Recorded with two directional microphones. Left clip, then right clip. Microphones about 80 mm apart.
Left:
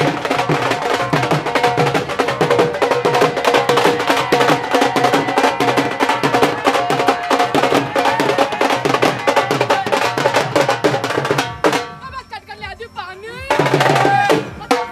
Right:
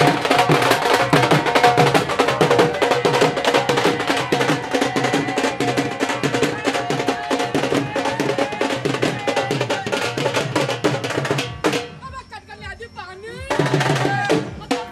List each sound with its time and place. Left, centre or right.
0.3 s music: centre
1.2 s music: centre; by 11.8 s left
13.5 s music: left